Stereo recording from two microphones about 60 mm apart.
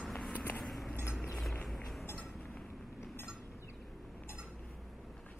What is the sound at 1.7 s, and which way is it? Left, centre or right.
Music, centre.